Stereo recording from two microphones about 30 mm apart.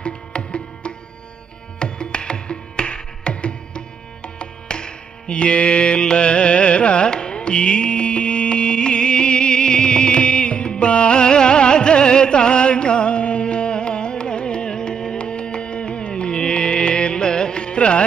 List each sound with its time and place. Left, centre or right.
0.0 s music: left